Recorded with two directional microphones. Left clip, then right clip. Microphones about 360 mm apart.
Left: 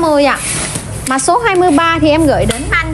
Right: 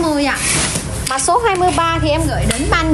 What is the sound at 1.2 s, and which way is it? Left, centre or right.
A woman's voice, left.